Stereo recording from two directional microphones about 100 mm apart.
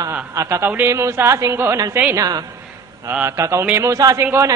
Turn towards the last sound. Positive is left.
turn(degrees=-30)  # may be behind; listen again after turning